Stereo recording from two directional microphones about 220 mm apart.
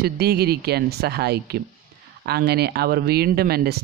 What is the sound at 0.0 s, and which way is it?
Speech, 45° right (ahead or behind).